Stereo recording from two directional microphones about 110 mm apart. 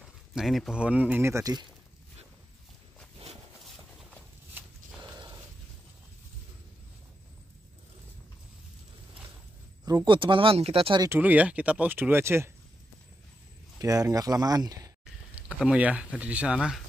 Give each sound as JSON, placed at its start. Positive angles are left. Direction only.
{"t": 0.3, "sound": "speech", "side_deg": 0}
{"t": 1.2, "sound": "speech", "side_deg": -25}
{"t": 3.6, "sound": "a sound", "side_deg": 0}
{"t": 5.0, "sound": "a sound", "side_deg": -35}
{"t": 9.8, "sound": "speech", "side_deg": -45}
{"t": 11.1, "sound": "speech", "side_deg": -15}
{"t": 13.7, "sound": "speech", "side_deg": -30}
{"t": 15.3, "sound": "speech", "side_deg": -10}